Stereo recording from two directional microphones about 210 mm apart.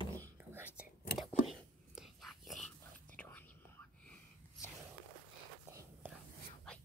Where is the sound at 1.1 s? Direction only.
Centre (ahead or behind).